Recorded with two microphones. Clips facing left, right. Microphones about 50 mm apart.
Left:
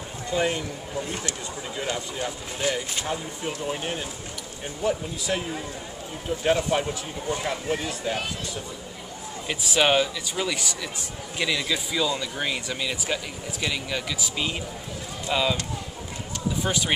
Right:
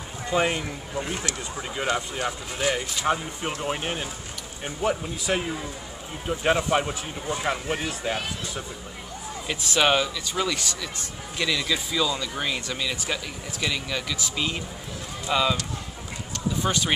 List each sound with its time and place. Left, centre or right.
0.3 s speech: right
3.1 s speech: right
9.5 s speech: centre
16.6 s speech: centre